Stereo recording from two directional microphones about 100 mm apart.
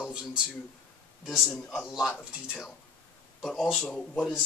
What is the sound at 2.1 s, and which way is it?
Speech, 20° left (ahead or behind).